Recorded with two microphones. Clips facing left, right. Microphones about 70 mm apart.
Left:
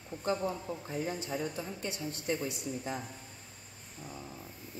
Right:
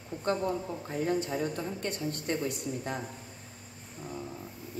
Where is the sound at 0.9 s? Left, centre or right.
Right.